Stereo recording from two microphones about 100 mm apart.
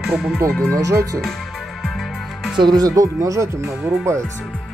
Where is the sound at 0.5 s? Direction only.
10° left (ahead or behind).